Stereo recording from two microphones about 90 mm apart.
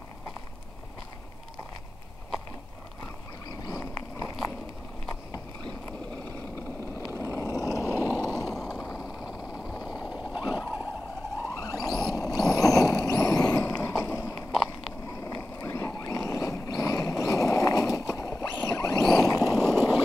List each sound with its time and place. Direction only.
3.4 s a sound: 45° left (ahead or behind)
7.0 s vehicle: 35° left (ahead or behind)
8.1 s a sound: 45° left (ahead or behind)
8.5 s skateboard: 5° left (ahead or behind)
8.9 s vehicle: centre (ahead or behind)
10.3 s vehicle: 55° left (ahead or behind)
11.4 s vehicle: 40° left (ahead or behind)
15.0 s boat: 40° left (ahead or behind)